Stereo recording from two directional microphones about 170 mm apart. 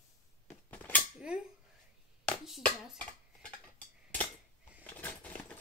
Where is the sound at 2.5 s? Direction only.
5° left (ahead or behind).